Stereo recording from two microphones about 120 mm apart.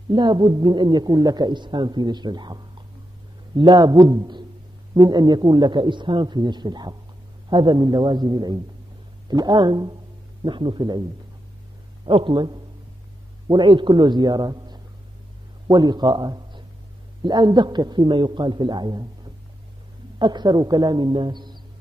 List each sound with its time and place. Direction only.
0.1 s a man's voice: 40° right (ahead or behind)
12.1 s a man's voice: 45° right (ahead or behind)
20.2 s a man's voice: 40° right (ahead or behind)